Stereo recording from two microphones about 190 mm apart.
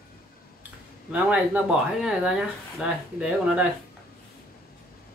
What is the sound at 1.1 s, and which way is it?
Speech, 5° right (ahead or behind).